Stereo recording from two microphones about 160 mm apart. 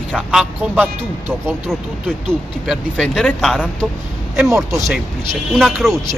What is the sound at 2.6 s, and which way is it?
Speech, centre (ahead or behind).